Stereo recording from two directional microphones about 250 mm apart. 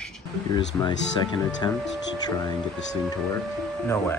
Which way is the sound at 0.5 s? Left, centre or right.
Centre.